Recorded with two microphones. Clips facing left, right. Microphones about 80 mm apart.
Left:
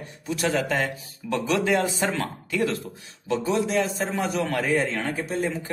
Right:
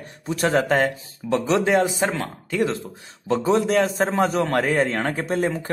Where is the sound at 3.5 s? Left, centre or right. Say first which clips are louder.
Right 5 dB; right.